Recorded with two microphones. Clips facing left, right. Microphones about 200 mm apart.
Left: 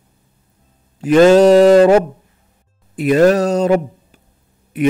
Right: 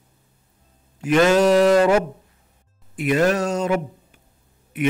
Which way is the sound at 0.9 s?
30° left (ahead or behind).